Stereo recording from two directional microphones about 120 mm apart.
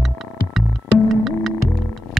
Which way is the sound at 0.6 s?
Centre (ahead or behind).